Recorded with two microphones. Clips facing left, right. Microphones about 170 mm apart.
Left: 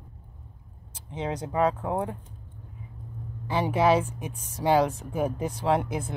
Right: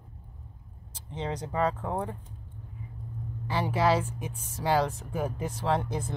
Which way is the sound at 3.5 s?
15° left (ahead or behind).